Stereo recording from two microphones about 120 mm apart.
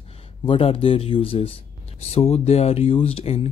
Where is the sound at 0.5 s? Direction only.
50° left (ahead or behind).